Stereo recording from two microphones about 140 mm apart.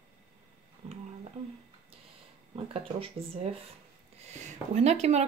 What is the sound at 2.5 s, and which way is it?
Speech, 40° right (ahead or behind).